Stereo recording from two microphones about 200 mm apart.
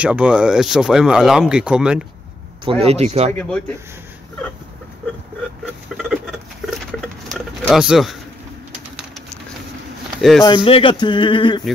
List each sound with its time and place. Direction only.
0.0 s speech: 5° right (ahead or behind)
2.6 s speech: 30° right (ahead or behind)
3.3 s speech: 5° left (ahead or behind)
6.6 s a sound: centre (ahead or behind)
10.1 s speech: centre (ahead or behind)
10.4 s speech: 25° left (ahead or behind)